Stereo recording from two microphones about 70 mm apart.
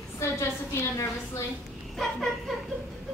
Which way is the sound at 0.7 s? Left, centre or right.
Left.